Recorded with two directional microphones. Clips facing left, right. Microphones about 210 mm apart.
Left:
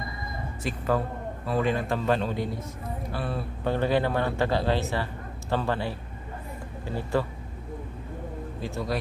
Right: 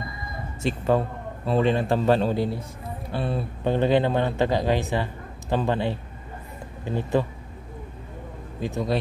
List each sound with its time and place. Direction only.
0.6 s a man's voice: 25° right (ahead or behind)
8.5 s a man's voice: 20° right (ahead or behind)